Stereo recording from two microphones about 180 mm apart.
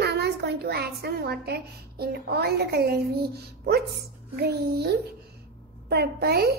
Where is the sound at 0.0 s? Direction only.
65° right (ahead or behind).